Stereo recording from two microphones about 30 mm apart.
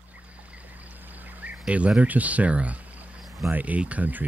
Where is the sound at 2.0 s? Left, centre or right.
Right.